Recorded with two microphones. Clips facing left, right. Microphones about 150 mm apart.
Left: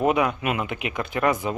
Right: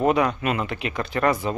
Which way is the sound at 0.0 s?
10° left (ahead or behind).